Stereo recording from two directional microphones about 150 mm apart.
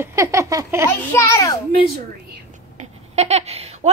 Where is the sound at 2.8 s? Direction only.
45° right (ahead or behind).